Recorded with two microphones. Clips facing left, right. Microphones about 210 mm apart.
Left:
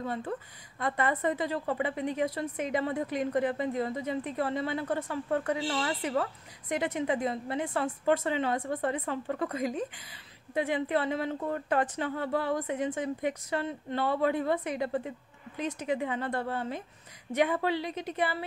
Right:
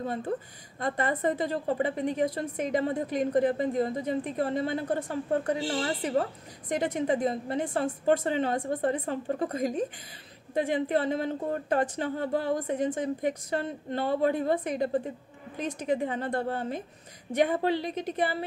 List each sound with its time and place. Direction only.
0.7 s a woman's voice: 45° right (ahead or behind)